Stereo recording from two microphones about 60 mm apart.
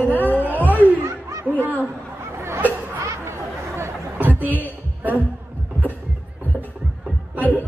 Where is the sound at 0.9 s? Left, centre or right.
Right.